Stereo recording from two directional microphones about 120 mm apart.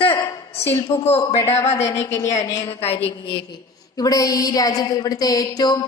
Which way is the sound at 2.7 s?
55° left (ahead or behind).